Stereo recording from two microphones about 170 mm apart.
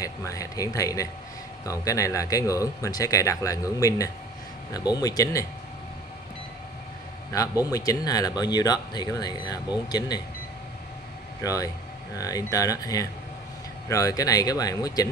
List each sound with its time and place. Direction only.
0.0 s speech: 20° left (ahead or behind)
7.7 s speech: 20° left (ahead or behind)
11.4 s speech: 20° left (ahead or behind)